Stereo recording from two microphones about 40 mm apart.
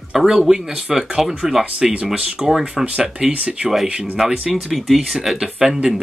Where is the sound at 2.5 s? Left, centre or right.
Centre.